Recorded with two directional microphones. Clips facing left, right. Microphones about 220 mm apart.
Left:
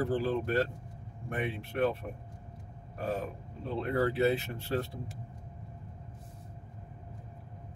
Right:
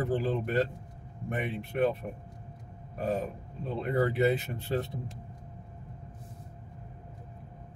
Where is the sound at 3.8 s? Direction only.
15° right (ahead or behind).